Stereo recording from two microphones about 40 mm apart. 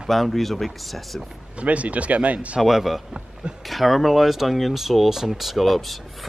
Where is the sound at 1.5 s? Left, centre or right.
Right.